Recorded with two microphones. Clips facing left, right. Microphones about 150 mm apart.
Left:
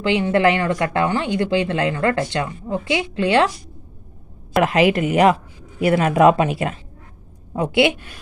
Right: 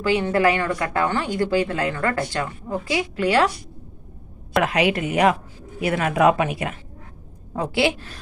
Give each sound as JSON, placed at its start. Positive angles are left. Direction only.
{"t": 0.0, "sound": "a woman's voice", "side_deg": 25}
{"t": 4.6, "sound": "a woman's voice", "side_deg": 25}